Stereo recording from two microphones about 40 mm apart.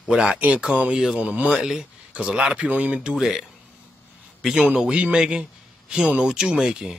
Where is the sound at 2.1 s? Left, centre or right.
Right.